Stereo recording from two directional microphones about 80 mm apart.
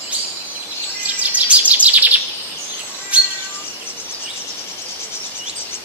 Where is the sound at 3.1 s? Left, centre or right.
Centre.